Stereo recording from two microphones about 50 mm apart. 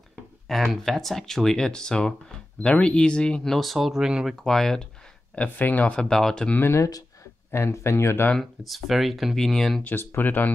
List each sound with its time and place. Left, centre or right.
0.5 s speech: centre
3.4 s speech: centre
4.4 s speech: centre
5.3 s speech: left
5.9 s speech: centre
6.6 s speech: left
8.4 s speech: centre
9.8 s speech: left